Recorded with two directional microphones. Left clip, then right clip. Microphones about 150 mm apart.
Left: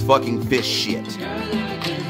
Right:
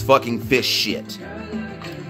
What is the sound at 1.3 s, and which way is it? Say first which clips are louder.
Music: left 8 dB; 40° left (ahead or behind).